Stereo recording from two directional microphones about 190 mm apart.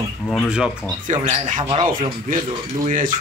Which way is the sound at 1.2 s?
35° right (ahead or behind).